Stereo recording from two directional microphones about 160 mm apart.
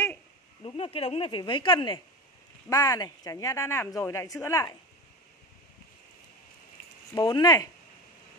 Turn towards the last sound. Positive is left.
turn(degrees=25)  # may be behind; listen again after turning